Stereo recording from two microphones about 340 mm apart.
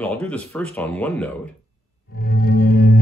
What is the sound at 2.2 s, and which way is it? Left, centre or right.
Music, left.